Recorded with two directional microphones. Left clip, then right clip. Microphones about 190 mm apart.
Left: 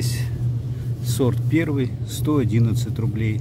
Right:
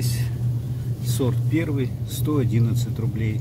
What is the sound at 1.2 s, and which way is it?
Speech, 60° left (ahead or behind).